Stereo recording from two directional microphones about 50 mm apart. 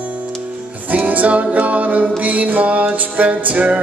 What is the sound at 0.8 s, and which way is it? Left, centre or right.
Music, right.